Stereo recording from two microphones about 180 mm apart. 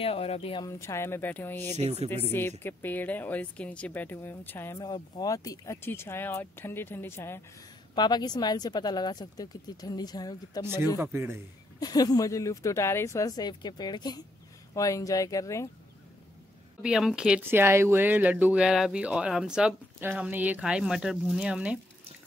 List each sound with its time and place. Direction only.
0.0 s speech: 35° left (ahead or behind)
0.7 s speech: 15° left (ahead or behind)
1.8 s speech: 35° right (ahead or behind)
2.6 s speech: 10° left (ahead or behind)
4.7 s speech: 25° left (ahead or behind)
11.0 s speech: 15° right (ahead or behind)
11.8 s speech: 20° left (ahead or behind)
16.8 s speech: 5° right (ahead or behind)